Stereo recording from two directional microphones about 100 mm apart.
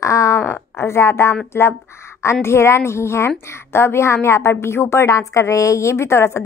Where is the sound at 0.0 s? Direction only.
30° left (ahead or behind).